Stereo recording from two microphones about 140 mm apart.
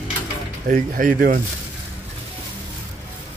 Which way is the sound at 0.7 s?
70° right (ahead or behind).